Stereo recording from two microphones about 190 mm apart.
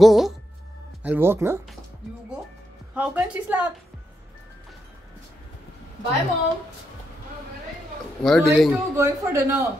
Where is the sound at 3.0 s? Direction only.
5° right (ahead or behind).